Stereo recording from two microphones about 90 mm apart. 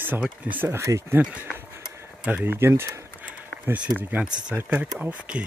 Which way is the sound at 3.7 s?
15° right (ahead or behind).